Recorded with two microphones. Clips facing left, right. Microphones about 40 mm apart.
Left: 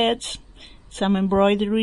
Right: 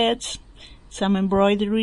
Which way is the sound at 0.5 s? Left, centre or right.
Centre.